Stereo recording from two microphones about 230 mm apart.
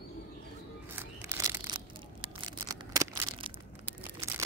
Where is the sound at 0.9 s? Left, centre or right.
Centre.